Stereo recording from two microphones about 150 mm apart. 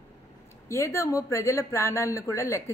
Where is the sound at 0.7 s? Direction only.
20° left (ahead or behind).